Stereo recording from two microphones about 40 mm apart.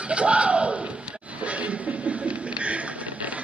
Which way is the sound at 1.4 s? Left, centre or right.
Right.